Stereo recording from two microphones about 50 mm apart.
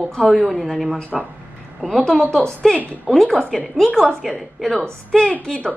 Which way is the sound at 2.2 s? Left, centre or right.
Centre.